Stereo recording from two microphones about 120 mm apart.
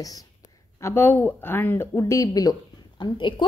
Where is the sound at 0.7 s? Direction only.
20° left (ahead or behind).